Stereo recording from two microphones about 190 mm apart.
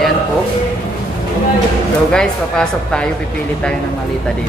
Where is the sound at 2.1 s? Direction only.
5° left (ahead or behind).